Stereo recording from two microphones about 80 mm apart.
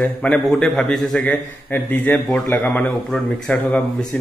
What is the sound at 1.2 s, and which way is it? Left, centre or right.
A man's voice, left.